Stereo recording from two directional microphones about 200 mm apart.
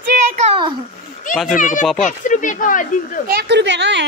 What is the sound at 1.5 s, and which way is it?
Speech, 40° left (ahead or behind).